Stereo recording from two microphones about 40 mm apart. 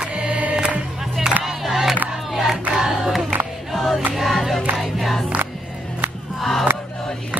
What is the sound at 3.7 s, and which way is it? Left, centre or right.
Music, centre.